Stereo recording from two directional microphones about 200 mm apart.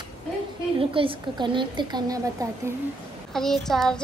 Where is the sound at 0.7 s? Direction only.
25° right (ahead or behind).